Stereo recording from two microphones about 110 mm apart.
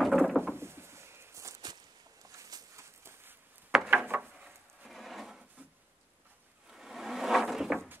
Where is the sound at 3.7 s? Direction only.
10° right (ahead or behind).